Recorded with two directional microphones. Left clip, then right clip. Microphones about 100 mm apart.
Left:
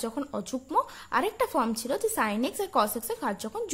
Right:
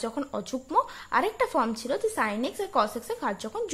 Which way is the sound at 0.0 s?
15° left (ahead or behind).